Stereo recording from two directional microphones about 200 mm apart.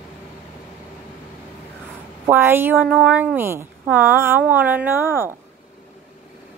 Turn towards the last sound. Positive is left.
turn(degrees=-10)  # may be behind; listen again after turning